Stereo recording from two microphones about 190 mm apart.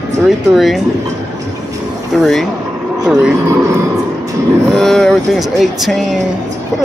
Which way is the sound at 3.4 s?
15° right (ahead or behind).